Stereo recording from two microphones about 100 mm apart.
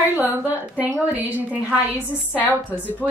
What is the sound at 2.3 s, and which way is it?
Speech, 15° right (ahead or behind).